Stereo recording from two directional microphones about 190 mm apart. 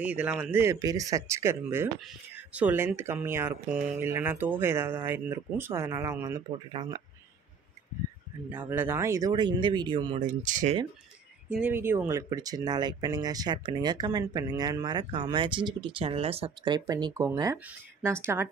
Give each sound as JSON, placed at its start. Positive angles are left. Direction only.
{"t": 0.0, "sound": "speech", "side_deg": -10}
{"t": 8.5, "sound": "speech", "side_deg": -10}
{"t": 10.2, "sound": "speech", "side_deg": -40}
{"t": 11.4, "sound": "speech", "side_deg": -5}